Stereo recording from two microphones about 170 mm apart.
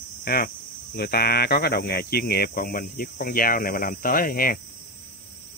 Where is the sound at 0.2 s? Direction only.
65° left (ahead or behind).